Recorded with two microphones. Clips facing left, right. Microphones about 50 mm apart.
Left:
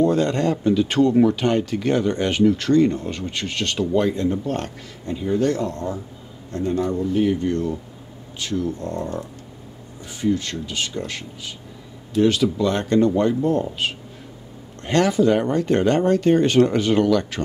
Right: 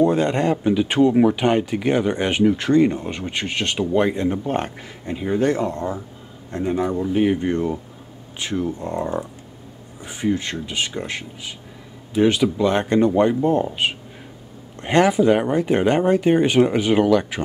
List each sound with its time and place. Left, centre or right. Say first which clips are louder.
0.0 s speech: right 1 dB; right